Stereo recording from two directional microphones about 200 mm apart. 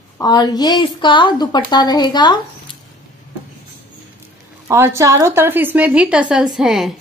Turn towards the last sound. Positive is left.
turn(degrees=0)  # may be behind; listen again after turning